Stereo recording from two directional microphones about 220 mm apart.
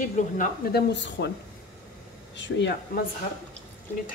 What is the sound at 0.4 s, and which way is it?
Speech, 50° left (ahead or behind).